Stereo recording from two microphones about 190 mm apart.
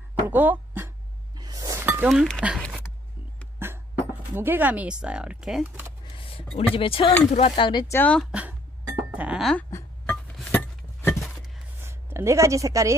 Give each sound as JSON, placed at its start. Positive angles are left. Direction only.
{"t": 0.3, "sound": "a sound", "side_deg": -10}
{"t": 2.0, "sound": "speech", "side_deg": 0}
{"t": 3.5, "sound": "a sound", "side_deg": -10}
{"t": 4.4, "sound": "speech", "side_deg": -10}
{"t": 6.1, "sound": "speech", "side_deg": 30}
{"t": 7.9, "sound": "speech", "side_deg": 5}
{"t": 9.7, "sound": "chink", "side_deg": 15}
{"t": 11.8, "sound": "a woman's voice", "side_deg": -15}